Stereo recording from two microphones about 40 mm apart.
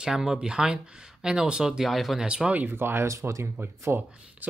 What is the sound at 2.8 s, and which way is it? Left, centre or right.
Speech, right.